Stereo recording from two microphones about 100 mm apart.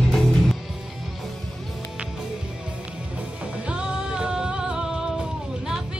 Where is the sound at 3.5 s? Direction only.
10° right (ahead or behind).